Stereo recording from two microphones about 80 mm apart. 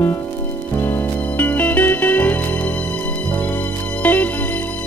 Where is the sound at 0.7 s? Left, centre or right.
Left.